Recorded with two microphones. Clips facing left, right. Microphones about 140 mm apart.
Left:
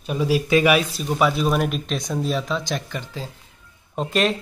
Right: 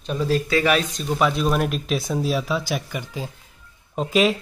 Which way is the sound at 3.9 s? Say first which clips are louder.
Right 2 dB; centre (ahead or behind).